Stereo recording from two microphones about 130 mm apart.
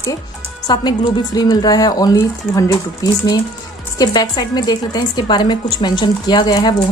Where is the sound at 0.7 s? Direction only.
30° left (ahead or behind).